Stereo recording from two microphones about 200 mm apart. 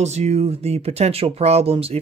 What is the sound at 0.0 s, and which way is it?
Speech, 35° right (ahead or behind).